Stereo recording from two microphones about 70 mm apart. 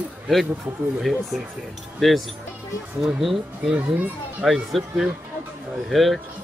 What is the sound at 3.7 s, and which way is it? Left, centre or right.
Speech, centre.